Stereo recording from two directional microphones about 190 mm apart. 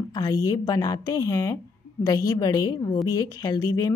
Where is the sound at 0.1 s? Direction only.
20° left (ahead or behind).